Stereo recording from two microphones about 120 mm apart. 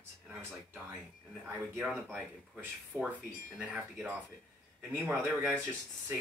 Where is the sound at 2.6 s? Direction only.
15° right (ahead or behind).